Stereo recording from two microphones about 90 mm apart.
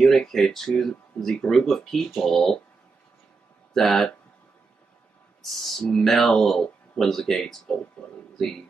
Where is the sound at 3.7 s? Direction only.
5° left (ahead or behind).